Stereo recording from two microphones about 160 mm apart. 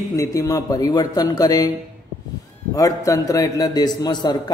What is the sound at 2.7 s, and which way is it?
Mantra, 20° left (ahead or behind).